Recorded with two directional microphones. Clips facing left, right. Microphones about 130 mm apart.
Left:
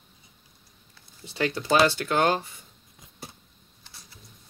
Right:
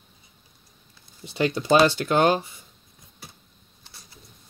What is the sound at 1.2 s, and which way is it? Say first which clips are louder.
Speech: right 3 dB; 20° right (ahead or behind).